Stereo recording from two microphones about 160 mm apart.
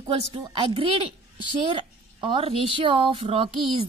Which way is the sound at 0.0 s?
35° right (ahead or behind).